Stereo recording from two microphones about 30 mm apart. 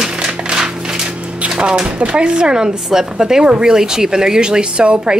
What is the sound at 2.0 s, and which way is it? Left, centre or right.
Speech, right.